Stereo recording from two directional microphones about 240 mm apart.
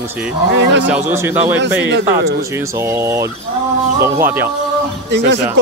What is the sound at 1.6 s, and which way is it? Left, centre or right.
Speech, right.